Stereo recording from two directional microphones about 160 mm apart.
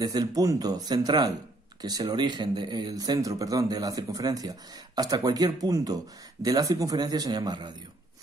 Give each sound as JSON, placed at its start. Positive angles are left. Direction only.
{"t": 0.0, "sound": "speech", "side_deg": -25}